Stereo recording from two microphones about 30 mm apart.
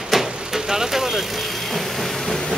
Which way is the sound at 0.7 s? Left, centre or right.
Centre.